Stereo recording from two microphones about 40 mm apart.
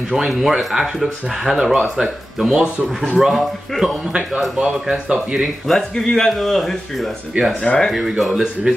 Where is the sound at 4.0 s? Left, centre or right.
Right.